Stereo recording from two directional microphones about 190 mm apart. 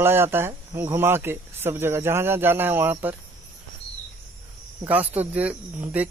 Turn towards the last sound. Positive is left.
turn(degrees=-10)  # may be behind; listen again after turning